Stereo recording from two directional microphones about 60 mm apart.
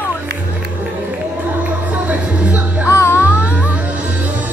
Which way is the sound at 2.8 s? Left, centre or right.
Left.